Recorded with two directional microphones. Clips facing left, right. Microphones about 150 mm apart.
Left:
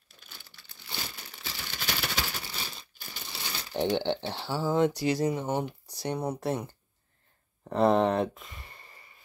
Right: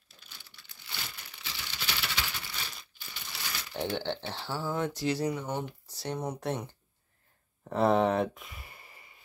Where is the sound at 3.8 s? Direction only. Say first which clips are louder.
Left 5 dB; 15° left (ahead or behind).